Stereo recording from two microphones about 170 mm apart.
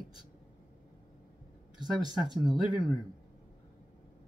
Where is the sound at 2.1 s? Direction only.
25° right (ahead or behind).